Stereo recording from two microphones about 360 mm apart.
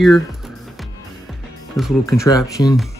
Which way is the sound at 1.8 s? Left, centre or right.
Centre.